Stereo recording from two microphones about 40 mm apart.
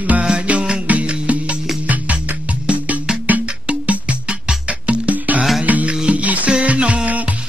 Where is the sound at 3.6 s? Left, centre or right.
Right.